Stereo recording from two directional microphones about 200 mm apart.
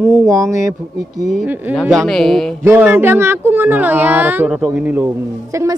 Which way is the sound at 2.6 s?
10° right (ahead or behind).